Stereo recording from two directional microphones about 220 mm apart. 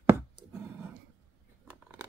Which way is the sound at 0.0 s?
10° right (ahead or behind).